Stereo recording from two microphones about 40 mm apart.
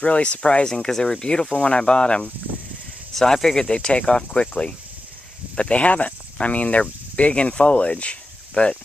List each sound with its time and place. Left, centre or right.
0.0 s speech: left
0.8 s speech: centre
3.2 s speech: centre; by 8.7 s left